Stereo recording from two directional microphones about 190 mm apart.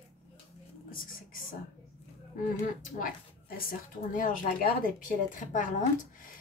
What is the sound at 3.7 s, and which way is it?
Speech, 45° left (ahead or behind).